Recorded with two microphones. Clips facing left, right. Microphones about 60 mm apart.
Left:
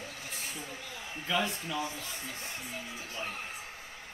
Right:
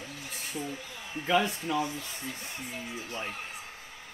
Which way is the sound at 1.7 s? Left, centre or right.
Right.